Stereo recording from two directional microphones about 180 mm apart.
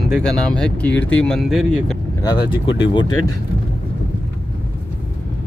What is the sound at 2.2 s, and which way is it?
Speech, 25° left (ahead or behind).